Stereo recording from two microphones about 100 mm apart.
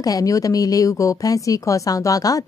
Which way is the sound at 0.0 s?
35° left (ahead or behind).